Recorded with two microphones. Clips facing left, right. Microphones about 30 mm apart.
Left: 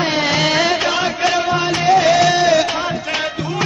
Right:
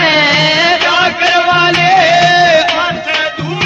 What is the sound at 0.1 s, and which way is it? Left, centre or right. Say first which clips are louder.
Music: right 7 dB; right.